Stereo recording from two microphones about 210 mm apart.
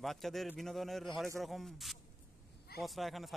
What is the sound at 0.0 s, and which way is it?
Speech, centre (ahead or behind).